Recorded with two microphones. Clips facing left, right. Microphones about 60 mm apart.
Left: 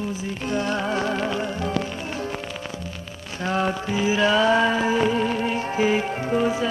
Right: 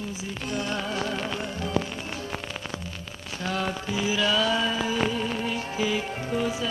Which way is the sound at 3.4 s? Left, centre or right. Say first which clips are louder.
Left 6 dB; left.